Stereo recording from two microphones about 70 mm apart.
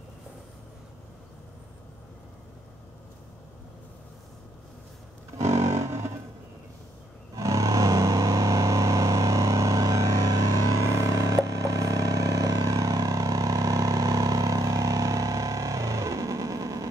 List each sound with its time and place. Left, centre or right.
5.4 s music: right
7.3 s music: right